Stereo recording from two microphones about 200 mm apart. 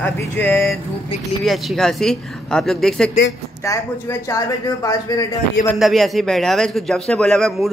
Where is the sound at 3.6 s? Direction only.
15° left (ahead or behind).